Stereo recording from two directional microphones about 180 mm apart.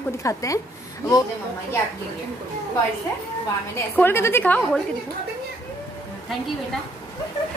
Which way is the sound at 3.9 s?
10° left (ahead or behind).